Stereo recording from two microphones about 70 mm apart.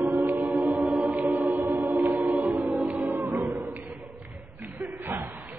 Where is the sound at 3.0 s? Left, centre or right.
Right.